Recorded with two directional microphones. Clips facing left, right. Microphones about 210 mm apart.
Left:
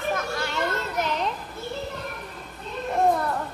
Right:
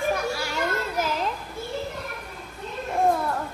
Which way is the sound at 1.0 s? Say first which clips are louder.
Left 1 dB; centre (ahead or behind).